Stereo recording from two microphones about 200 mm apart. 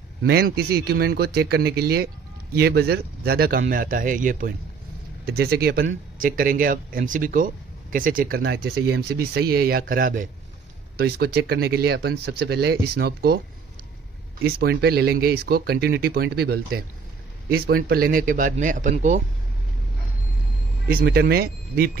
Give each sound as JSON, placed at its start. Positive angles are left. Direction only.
{"t": 0.2, "sound": "speech", "side_deg": -50}
{"t": 5.2, "sound": "speech", "side_deg": -50}
{"t": 14.4, "sound": "speech", "side_deg": -55}
{"t": 20.9, "sound": "speech", "side_deg": -50}